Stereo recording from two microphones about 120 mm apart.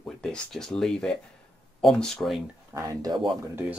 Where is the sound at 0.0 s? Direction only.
5° left (ahead or behind).